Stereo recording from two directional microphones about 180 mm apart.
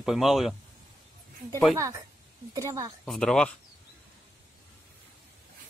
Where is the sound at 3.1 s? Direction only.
5° left (ahead or behind).